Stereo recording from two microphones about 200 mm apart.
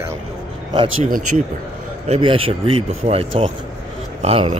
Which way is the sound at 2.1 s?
25° right (ahead or behind).